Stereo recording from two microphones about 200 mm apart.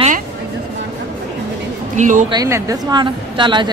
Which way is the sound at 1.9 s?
40° right (ahead or behind).